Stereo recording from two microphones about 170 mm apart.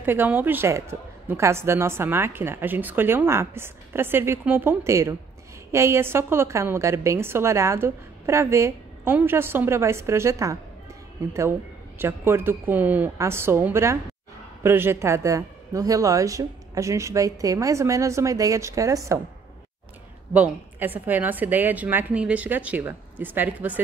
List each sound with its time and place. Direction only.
0.0 s a woman's voice: 10° right (ahead or behind)
12.0 s a woman's voice: 15° right (ahead or behind)
20.3 s a woman's voice: 10° right (ahead or behind)